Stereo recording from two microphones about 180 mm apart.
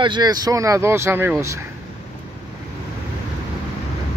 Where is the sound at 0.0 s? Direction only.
25° right (ahead or behind).